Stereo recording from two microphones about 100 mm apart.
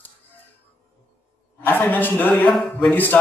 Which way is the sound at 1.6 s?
20° left (ahead or behind).